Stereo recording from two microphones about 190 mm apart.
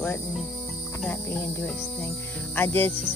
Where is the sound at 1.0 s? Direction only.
10° left (ahead or behind).